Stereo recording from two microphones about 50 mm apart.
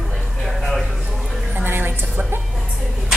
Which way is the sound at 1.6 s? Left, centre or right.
Right.